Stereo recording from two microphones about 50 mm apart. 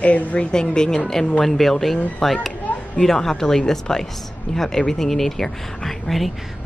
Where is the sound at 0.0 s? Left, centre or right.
Left.